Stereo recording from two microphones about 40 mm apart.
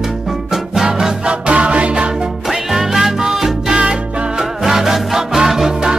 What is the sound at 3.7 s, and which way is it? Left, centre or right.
Music, centre.